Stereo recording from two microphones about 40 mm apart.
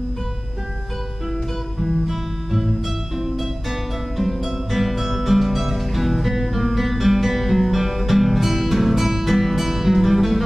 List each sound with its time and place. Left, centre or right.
1.8 s music: centre